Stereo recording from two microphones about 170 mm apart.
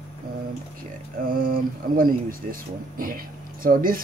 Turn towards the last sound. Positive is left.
turn(degrees=-55)  # may be behind; listen again after turning